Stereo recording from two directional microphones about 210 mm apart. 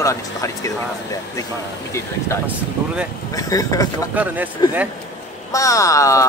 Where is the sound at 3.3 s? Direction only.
15° left (ahead or behind).